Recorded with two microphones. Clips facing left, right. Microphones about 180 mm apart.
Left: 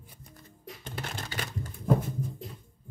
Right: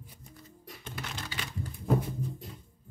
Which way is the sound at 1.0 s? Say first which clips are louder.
Left 3 dB; 50° left (ahead or behind).